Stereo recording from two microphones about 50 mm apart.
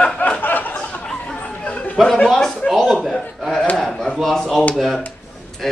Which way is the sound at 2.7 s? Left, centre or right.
Centre.